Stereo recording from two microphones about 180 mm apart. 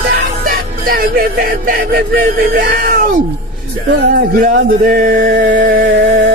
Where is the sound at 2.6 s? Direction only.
60° right (ahead or behind).